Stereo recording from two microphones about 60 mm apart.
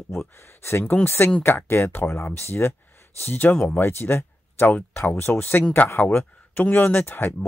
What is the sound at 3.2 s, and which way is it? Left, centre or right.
Speech, left.